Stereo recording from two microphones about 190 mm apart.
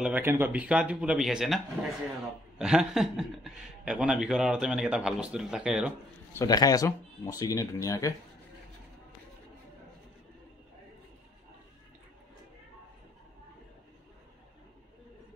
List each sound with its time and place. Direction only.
0.0 s speech: 10° right (ahead or behind)
2.6 s speech: 5° right (ahead or behind)
6.3 s speech: 20° left (ahead or behind)